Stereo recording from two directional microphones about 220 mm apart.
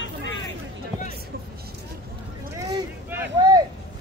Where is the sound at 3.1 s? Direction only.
15° right (ahead or behind).